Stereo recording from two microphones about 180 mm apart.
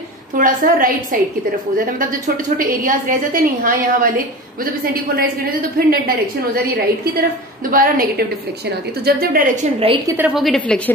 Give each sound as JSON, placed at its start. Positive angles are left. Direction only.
{"t": 0.4, "sound": "a woman's voice", "side_deg": -50}
{"t": 5.1, "sound": "a woman's voice", "side_deg": -55}
{"t": 10.0, "sound": "a woman's voice", "side_deg": -10}
{"t": 10.4, "sound": "a woman's voice", "side_deg": 0}